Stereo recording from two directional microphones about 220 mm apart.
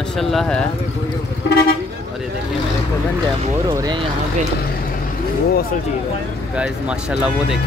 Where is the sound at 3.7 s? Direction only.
15° right (ahead or behind).